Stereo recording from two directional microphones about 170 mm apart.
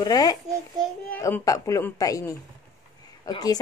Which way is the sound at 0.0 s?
20° left (ahead or behind).